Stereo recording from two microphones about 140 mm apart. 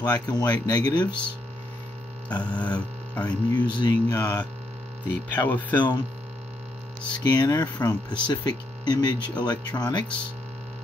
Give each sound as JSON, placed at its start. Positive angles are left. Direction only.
{"t": 0.0, "sound": "speech", "side_deg": 30}
{"t": 2.4, "sound": "speech", "side_deg": 10}
{"t": 3.3, "sound": "speech", "side_deg": 30}
{"t": 4.1, "sound": "speech", "side_deg": 20}
{"t": 5.8, "sound": "speech", "side_deg": 30}
{"t": 7.2, "sound": "speech", "side_deg": 30}